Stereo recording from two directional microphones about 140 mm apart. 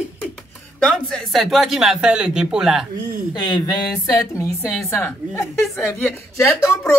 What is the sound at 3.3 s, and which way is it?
A woman's voice, 30° left (ahead or behind).